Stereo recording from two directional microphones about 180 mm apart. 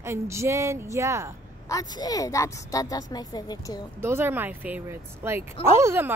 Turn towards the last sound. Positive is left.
turn(degrees=-15)  # may be behind; listen again after turning